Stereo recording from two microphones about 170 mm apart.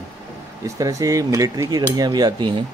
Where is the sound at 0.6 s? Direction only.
20° right (ahead or behind).